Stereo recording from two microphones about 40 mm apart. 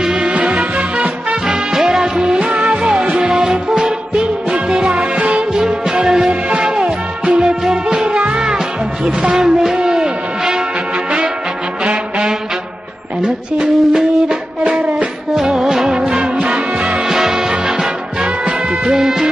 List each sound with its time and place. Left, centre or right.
0.0 s music: centre
1.7 s music: centre
5.6 s music: centre
11.8 s music: right
15.4 s music: centre
16.1 s music: right
17.1 s music: centre